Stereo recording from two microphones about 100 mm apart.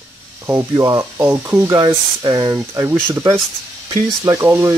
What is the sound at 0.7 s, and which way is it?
Speech, 45° right (ahead or behind).